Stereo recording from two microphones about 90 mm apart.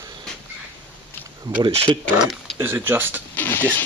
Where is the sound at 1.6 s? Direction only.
75° right (ahead or behind).